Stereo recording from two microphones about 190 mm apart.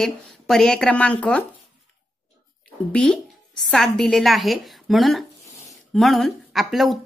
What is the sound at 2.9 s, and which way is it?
A woman's voice, 5° left (ahead or behind).